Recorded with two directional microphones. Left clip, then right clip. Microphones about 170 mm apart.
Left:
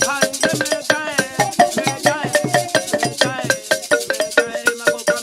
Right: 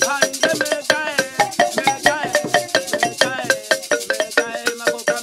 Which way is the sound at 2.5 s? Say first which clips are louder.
Left 1 dB; 30° right (ahead or behind).